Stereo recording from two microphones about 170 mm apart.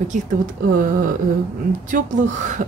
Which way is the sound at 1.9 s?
45° right (ahead or behind).